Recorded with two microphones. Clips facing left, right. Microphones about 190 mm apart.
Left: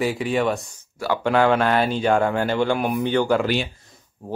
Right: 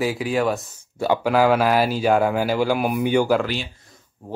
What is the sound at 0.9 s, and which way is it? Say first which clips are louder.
Speech: right 3 dB; 20° right (ahead or behind).